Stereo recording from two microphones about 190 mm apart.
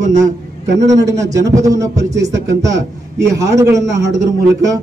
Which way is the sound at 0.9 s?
15° right (ahead or behind).